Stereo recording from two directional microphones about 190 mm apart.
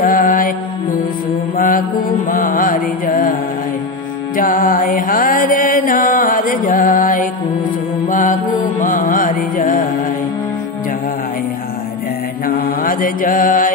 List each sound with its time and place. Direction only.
0.0 s music: 45° left (ahead or behind)
2.3 s music: 45° left (ahead or behind)
4.4 s mantra: 45° left (ahead or behind)
8.1 s music: 45° left (ahead or behind)
12.4 s mantra: 50° left (ahead or behind)